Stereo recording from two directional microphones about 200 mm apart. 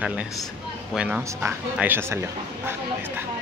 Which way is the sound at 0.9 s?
5° right (ahead or behind).